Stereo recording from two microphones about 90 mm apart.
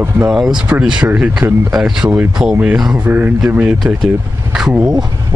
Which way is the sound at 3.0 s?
20° right (ahead or behind).